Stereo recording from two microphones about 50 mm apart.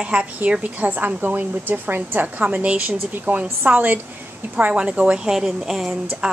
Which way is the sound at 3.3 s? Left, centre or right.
Right.